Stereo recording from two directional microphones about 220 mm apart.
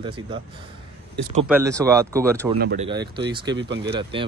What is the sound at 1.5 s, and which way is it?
Speech, 15° right (ahead or behind).